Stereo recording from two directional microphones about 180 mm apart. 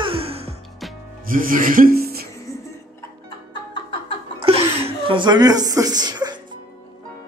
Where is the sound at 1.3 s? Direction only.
50° right (ahead or behind).